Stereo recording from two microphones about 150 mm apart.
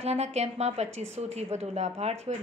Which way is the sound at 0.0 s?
45° right (ahead or behind).